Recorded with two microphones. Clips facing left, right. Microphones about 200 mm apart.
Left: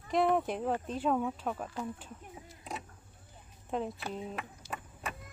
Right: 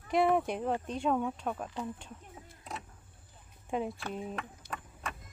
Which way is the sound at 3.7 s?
5° right (ahead or behind).